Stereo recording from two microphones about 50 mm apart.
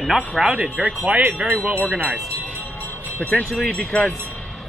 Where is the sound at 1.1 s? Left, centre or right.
Right.